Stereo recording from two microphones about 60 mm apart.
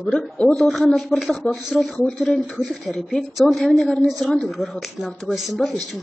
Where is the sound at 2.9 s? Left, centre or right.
Centre.